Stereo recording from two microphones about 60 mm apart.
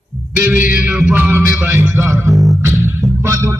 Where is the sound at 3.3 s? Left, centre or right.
Right.